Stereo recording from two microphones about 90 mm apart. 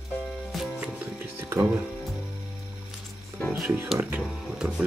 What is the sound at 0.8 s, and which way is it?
Music, 20° right (ahead or behind).